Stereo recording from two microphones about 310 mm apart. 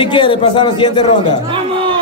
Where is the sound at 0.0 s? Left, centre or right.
Centre.